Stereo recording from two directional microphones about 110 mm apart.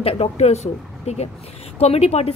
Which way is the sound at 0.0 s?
65° left (ahead or behind).